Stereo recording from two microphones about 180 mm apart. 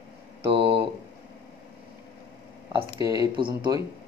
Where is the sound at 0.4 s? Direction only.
30° right (ahead or behind).